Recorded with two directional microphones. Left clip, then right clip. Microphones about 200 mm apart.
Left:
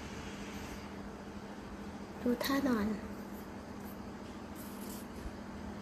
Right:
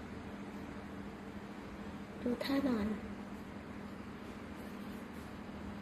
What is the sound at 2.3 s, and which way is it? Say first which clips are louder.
Speech: left 2 dB; 5° left (ahead or behind).